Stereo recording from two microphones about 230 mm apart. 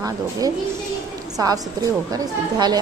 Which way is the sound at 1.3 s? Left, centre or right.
Centre.